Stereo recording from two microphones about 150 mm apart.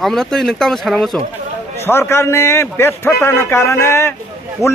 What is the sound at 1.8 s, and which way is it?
Speech, 15° left (ahead or behind).